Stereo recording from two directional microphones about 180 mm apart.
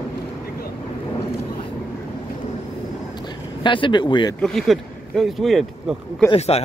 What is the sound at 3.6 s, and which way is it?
Speech, 25° left (ahead or behind).